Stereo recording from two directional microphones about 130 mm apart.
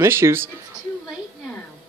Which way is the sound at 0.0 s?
20° right (ahead or behind).